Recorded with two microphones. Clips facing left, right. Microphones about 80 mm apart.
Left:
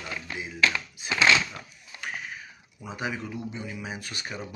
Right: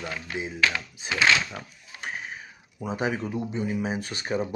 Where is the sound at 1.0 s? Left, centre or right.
Right.